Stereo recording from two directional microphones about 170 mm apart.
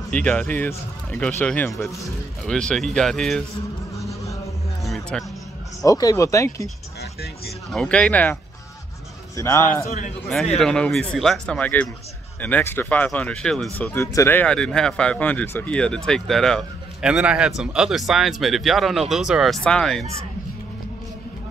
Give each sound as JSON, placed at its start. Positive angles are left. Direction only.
{"t": 0.1, "sound": "speech", "side_deg": 10}
{"t": 4.1, "sound": "a sound", "side_deg": 20}
{"t": 4.8, "sound": "music", "side_deg": 0}
{"t": 5.8, "sound": "speech", "side_deg": 20}
{"t": 7.0, "sound": "speech", "side_deg": 70}
{"t": 7.7, "sound": "speech", "side_deg": 5}
{"t": 9.4, "sound": "speech", "side_deg": 15}
{"t": 9.8, "sound": "a man's voice", "side_deg": 45}
{"t": 10.2, "sound": "speech", "side_deg": 5}